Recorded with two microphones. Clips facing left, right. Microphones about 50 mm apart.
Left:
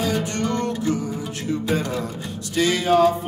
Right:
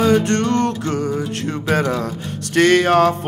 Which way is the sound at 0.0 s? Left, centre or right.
Right.